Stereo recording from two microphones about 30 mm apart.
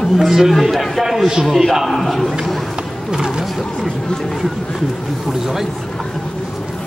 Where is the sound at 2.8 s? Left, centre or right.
Right.